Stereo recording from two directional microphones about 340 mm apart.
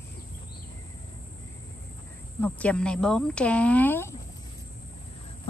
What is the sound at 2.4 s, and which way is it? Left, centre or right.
Speech, centre.